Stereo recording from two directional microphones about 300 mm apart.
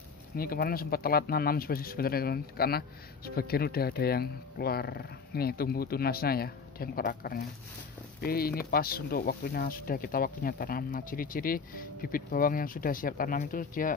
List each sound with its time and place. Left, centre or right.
0.4 s speech: left